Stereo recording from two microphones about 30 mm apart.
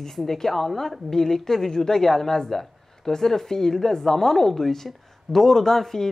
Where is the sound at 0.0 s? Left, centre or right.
Centre.